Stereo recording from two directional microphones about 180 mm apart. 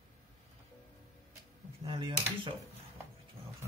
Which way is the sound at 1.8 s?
30° right (ahead or behind).